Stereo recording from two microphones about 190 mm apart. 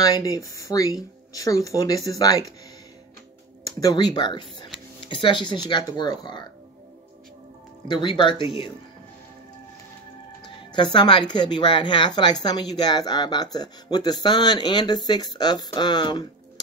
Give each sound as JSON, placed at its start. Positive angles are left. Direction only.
{"t": 0.0, "sound": "speech", "side_deg": 20}
{"t": 3.6, "sound": "speech", "side_deg": 20}
{"t": 7.9, "sound": "speech", "side_deg": 25}
{"t": 10.4, "sound": "speech", "side_deg": 25}